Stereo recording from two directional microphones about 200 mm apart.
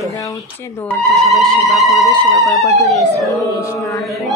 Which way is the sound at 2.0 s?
20° right (ahead or behind).